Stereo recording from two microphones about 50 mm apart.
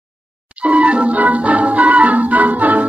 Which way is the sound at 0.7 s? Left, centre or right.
Right.